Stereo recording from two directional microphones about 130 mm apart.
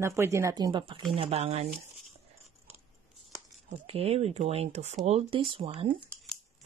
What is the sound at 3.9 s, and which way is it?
Speech, 50° right (ahead or behind).